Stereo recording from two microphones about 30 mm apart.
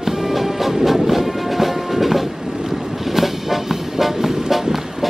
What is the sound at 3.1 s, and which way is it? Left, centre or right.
Vehicle, centre.